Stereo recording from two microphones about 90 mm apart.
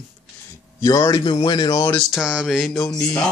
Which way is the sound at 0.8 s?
40° left (ahead or behind).